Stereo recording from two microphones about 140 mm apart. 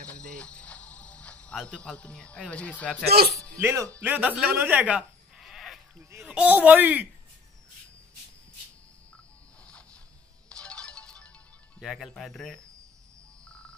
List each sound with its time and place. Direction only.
0.0 s cricket: 10° left (ahead or behind)
3.0 s speech: centre (ahead or behind)
3.6 s speech: 20° right (ahead or behind)
10.5 s music: 5° left (ahead or behind)
11.8 s speech: centre (ahead or behind)
13.5 s music: 5° left (ahead or behind)